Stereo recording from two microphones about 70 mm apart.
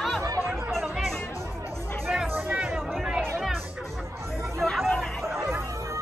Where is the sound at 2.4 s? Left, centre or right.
Centre.